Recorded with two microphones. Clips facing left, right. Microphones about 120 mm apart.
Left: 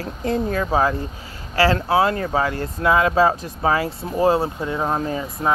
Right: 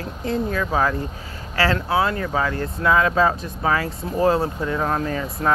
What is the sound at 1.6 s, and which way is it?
Speech, 35° left (ahead or behind).